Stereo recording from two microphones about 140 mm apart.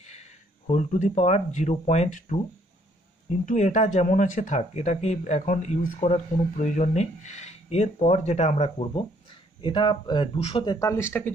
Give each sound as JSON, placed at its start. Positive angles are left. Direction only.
{"t": 0.7, "sound": "speech", "side_deg": 60}
{"t": 3.4, "sound": "speech", "side_deg": 55}